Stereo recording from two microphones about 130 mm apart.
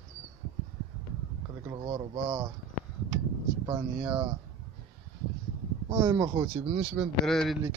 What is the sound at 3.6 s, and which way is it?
Speech, 25° right (ahead or behind).